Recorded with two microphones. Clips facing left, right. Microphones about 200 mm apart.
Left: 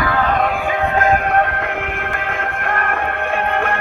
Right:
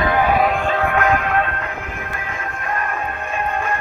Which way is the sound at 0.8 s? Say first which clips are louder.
Left 3 dB; 30° left (ahead or behind).